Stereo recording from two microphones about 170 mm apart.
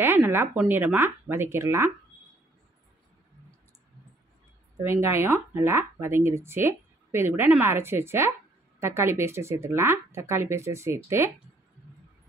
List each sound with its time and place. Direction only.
0.0 s speech: 15° right (ahead or behind)
4.8 s speech: 15° right (ahead or behind)